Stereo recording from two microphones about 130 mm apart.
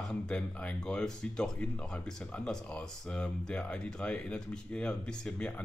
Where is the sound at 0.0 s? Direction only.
5° left (ahead or behind).